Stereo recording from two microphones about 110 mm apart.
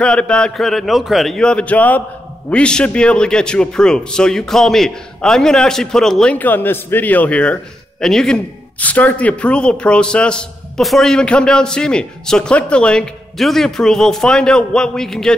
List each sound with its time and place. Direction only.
0.0 s speech: 10° left (ahead or behind)
6.3 s speech: 15° left (ahead or behind)